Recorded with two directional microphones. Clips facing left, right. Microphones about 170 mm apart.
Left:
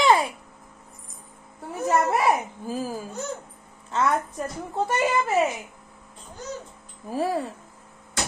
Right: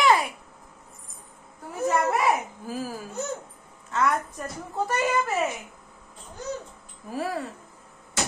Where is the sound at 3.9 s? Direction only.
30° left (ahead or behind).